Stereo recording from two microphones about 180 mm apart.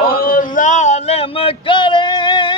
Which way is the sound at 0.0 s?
55° left (ahead or behind).